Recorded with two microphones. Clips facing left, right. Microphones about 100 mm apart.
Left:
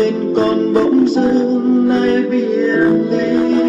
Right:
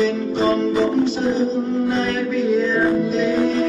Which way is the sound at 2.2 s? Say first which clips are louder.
Left 4 dB; centre (ahead or behind).